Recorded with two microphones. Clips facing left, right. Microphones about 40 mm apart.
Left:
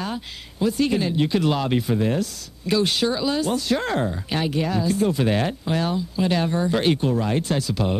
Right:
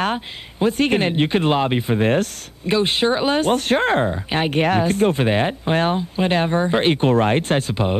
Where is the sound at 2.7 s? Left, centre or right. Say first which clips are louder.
Right 3 dB; right.